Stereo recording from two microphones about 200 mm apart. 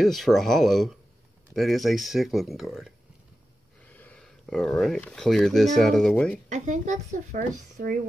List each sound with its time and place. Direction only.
0.0 s speech: centre (ahead or behind)
6.5 s speech: 35° right (ahead or behind)